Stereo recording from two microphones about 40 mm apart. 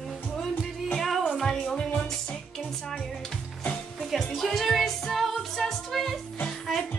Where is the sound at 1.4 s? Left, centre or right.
Centre.